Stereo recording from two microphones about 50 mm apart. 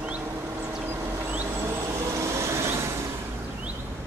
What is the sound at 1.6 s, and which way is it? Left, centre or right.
Vehicle, right.